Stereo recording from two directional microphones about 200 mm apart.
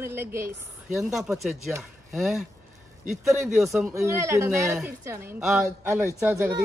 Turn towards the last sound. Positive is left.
turn(degrees=-10)  # may be behind; listen again after turning